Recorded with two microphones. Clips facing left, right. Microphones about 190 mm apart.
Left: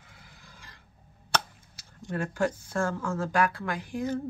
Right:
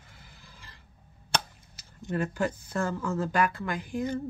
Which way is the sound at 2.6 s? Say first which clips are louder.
Left 1 dB; 10° left (ahead or behind).